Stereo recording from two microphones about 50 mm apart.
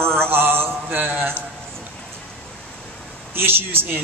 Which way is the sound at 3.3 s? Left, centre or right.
Right.